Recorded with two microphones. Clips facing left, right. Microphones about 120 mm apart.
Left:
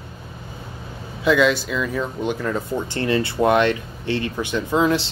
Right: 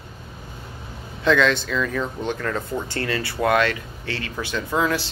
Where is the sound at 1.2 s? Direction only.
10° left (ahead or behind).